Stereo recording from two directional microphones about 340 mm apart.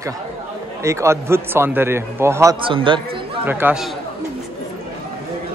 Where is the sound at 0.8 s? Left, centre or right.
Centre.